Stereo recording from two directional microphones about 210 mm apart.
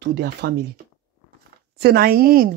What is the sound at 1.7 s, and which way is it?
Speech, 45° right (ahead or behind).